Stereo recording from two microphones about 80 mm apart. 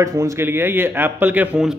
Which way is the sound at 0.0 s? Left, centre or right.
Right.